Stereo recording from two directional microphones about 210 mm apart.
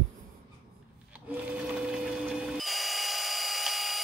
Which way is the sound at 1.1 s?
5° right (ahead or behind).